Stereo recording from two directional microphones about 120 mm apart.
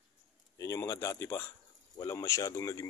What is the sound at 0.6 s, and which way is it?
Speech, 25° left (ahead or behind).